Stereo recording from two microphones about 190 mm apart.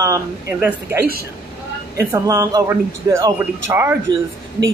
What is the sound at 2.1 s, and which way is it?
A man's voice, 20° right (ahead or behind).